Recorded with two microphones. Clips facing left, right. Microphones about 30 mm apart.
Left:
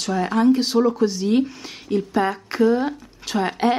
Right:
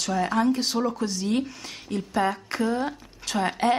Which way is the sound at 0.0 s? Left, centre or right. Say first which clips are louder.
Left 4 dB; centre.